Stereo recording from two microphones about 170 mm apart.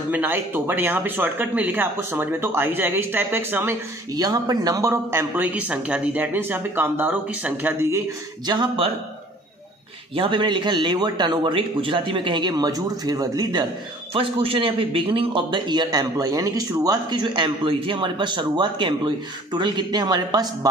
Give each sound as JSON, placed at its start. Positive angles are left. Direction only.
{"t": 0.1, "sound": "speech", "side_deg": -10}
{"t": 8.5, "sound": "a man's voice", "side_deg": -30}
{"t": 10.1, "sound": "a man's voice", "side_deg": -30}